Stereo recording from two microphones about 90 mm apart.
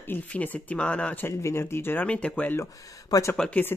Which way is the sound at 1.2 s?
30° left (ahead or behind).